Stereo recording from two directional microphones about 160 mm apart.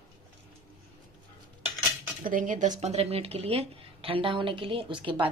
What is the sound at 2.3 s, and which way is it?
Speech, 55° right (ahead or behind).